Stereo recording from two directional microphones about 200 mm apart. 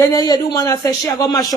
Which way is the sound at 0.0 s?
20° left (ahead or behind).